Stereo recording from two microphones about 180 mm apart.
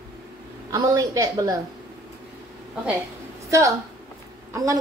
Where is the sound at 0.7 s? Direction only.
20° right (ahead or behind).